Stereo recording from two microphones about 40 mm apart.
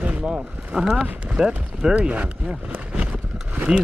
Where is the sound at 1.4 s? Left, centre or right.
Centre.